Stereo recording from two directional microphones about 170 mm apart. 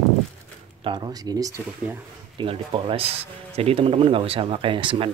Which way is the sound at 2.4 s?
30° right (ahead or behind).